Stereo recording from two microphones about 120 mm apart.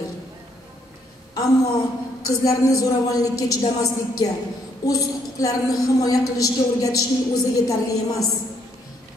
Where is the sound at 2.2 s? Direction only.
30° left (ahead or behind).